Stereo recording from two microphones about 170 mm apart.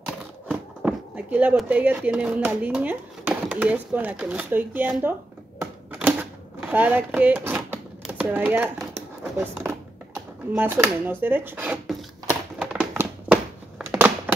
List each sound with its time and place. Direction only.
0.0 s speech: 5° right (ahead or behind)
5.6 s typewriter: 10° right (ahead or behind)
6.6 s speech: 10° right (ahead or behind)
10.5 s a sound: 10° right (ahead or behind)